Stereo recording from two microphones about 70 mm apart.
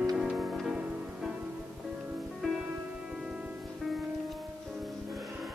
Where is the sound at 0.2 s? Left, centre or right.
Centre.